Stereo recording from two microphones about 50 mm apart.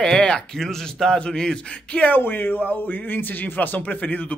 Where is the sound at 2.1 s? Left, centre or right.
Left.